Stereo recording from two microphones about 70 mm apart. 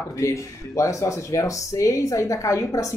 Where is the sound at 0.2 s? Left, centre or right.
Left.